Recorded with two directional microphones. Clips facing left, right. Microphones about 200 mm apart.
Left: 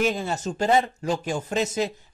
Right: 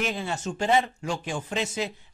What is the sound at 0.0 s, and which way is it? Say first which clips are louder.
Speech: left 5 dB; 40° left (ahead or behind).